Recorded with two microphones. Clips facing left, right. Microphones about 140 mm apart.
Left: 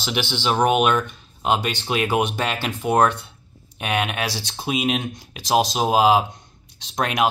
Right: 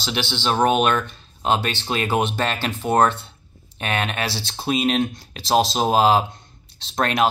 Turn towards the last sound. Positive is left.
turn(degrees=10)  # may be behind; listen again after turning